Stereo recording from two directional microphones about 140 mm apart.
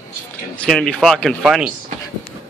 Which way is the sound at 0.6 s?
5° left (ahead or behind).